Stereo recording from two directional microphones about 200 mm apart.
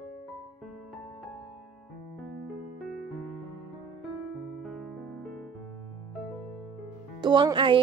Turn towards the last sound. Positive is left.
turn(degrees=-25)  # may be behind; listen again after turning